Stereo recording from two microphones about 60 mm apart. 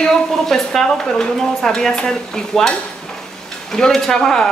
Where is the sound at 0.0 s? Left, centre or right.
Centre.